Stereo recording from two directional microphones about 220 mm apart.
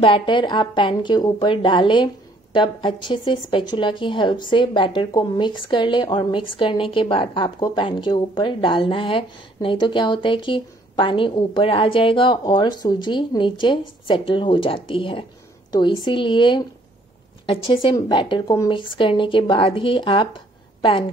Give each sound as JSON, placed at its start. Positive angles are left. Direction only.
{"t": 0.0, "sound": "a woman's voice", "side_deg": 25}